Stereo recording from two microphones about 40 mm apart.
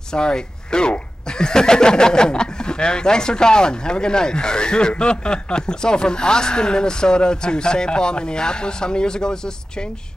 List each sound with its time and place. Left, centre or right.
0.1 s speech: centre